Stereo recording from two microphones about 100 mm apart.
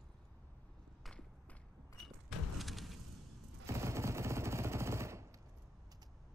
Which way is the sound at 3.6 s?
30° right (ahead or behind).